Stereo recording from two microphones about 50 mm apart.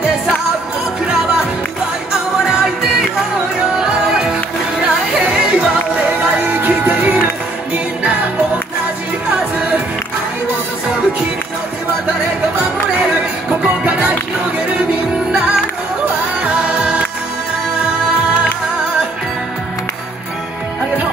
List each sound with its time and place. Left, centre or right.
1.0 s music: centre; by 7.2 s right
8.0 s music: right
12.5 s music: right
16.6 s music: centre